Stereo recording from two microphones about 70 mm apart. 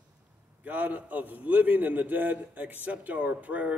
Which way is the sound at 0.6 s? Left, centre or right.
Right.